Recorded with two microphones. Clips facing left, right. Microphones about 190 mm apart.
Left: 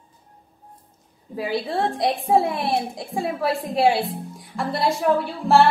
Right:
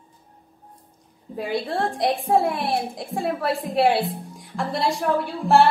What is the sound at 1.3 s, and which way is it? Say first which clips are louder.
A woman's voice: left 1 dB; centre (ahead or behind).